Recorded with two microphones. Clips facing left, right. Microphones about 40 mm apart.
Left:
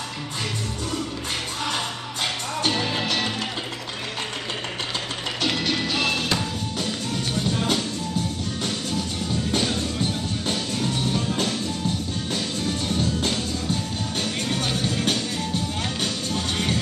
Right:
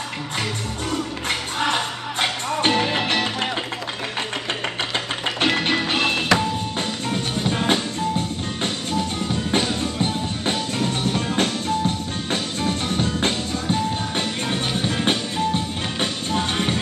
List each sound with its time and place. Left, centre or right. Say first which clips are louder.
1.6 s music: right 7 dB; right
5.4 s music: right 4 dB; right
10.4 s music: right 3 dB; right